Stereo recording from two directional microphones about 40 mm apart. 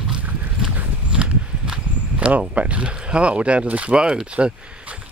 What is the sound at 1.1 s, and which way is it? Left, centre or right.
Clip-clop, right.